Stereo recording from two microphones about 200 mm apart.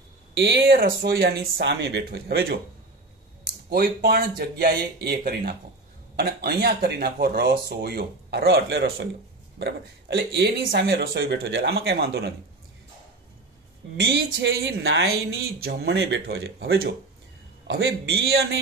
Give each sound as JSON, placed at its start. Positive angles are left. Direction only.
{"t": 0.4, "sound": "speech", "side_deg": -50}
{"t": 13.9, "sound": "speech", "side_deg": -60}